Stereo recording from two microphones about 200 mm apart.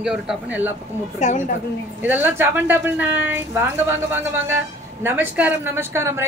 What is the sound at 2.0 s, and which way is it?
A woman's voice, 10° right (ahead or behind).